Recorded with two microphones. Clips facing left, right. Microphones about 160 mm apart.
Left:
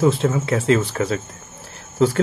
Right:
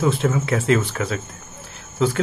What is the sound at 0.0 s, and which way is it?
Speech, 30° left (ahead or behind).